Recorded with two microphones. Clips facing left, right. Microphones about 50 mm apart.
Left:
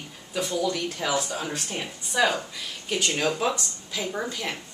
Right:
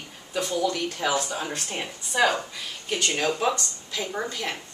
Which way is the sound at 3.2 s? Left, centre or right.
Centre.